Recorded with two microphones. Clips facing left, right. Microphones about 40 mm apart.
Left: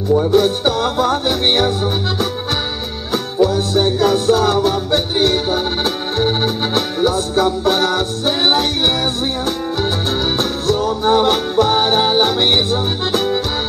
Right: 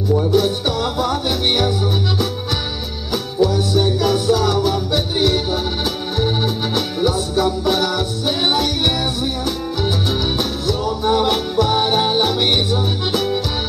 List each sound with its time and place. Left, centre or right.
0.3 s music: left
3.1 s music: left
3.5 s music: left
6.1 s organ: left
7.1 s music: left
10.3 s music: left